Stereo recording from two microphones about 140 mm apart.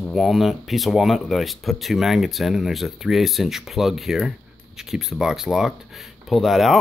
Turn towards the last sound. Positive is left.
turn(degrees=0)  # may be behind; listen again after turning